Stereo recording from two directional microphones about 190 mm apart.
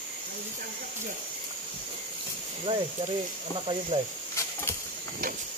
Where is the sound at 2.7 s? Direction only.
30° right (ahead or behind).